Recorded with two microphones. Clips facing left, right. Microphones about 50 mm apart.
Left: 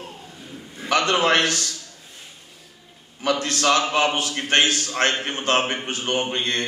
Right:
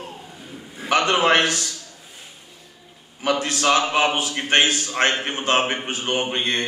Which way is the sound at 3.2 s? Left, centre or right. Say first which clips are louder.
Right 1 dB; centre.